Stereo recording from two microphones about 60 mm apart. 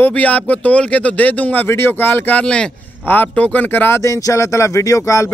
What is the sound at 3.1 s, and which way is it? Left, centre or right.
Speech, left.